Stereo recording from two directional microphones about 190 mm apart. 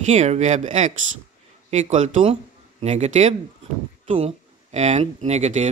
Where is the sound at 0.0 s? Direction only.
35° right (ahead or behind).